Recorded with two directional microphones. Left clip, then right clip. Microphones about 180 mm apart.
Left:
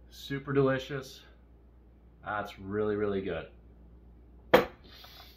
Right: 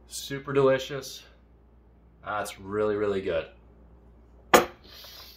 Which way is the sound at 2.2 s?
20° right (ahead or behind).